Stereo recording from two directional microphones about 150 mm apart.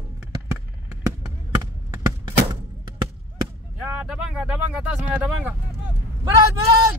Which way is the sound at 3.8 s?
5° right (ahead or behind).